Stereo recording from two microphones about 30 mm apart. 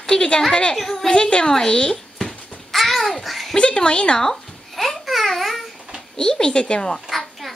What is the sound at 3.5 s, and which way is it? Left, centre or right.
Speech, left.